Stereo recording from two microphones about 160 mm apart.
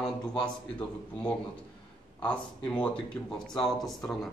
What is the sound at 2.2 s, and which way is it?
A man's voice, 5° left (ahead or behind).